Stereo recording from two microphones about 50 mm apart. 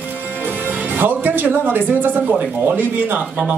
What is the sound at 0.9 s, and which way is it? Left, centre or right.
Speech, right.